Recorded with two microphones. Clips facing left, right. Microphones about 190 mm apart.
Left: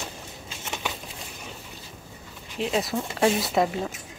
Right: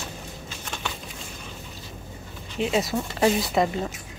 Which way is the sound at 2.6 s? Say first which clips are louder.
Right 2 dB; centre (ahead or behind).